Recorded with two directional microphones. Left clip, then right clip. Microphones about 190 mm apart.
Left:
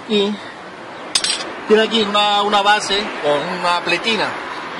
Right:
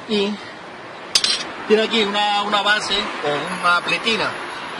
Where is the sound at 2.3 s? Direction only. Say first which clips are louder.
Left 4 dB; 25° left (ahead or behind).